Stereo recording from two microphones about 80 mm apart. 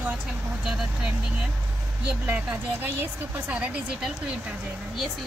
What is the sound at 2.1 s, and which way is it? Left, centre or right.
Speech, centre.